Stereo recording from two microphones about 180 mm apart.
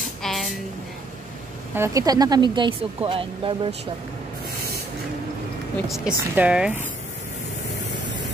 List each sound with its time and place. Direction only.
0.2 s a sound: centre (ahead or behind)
1.8 s speech: 20° right (ahead or behind)
5.9 s a woman's voice: 5° right (ahead or behind)